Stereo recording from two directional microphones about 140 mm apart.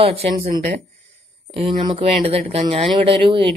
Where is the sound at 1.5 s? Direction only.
45° right (ahead or behind).